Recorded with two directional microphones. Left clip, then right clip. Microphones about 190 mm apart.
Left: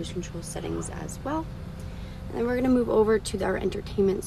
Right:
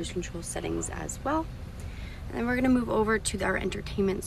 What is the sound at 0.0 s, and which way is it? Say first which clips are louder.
Speech: even; 15° left (ahead or behind).